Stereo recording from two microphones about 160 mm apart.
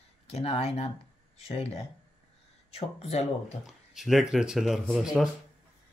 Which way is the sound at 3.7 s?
Centre (ahead or behind).